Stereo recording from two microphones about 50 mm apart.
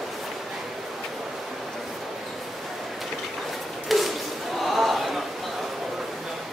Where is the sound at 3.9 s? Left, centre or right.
Centre.